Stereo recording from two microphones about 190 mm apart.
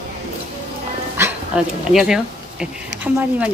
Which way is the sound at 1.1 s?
10° right (ahead or behind).